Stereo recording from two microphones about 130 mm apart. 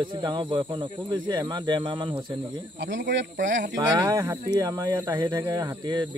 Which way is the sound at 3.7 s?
25° right (ahead or behind).